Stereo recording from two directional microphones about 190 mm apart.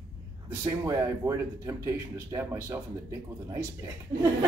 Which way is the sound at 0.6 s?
15° right (ahead or behind).